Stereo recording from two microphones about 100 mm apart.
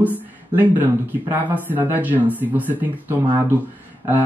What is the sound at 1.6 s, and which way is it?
Speech, 20° right (ahead or behind).